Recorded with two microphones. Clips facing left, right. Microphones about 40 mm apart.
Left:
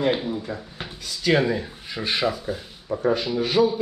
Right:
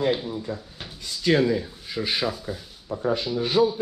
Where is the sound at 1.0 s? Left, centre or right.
Left.